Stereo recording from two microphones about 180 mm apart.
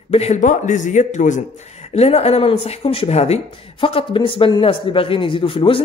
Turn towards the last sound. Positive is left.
turn(degrees=30)  # may be behind; listen again after turning